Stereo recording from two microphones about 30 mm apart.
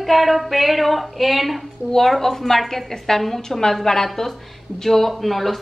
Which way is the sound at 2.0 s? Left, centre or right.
Centre.